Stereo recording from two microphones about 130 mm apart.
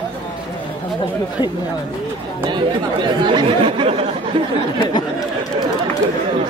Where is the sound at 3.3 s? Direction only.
40° right (ahead or behind).